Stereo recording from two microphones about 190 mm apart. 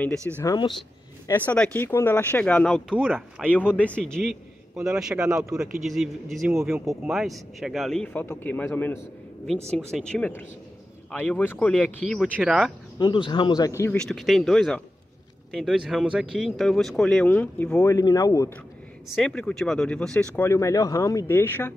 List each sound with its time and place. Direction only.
0.4 s speech: 20° left (ahead or behind)
1.2 s speech: 10° left (ahead or behind)
12.2 s speech: 5° right (ahead or behind)
13.0 s speech: 25° left (ahead or behind)
13.9 s speech: centre (ahead or behind)
17.9 s speech: 20° left (ahead or behind)
19.1 s speech: 5° left (ahead or behind)